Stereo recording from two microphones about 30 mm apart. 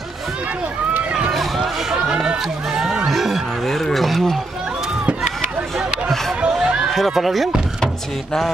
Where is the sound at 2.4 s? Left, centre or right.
Right.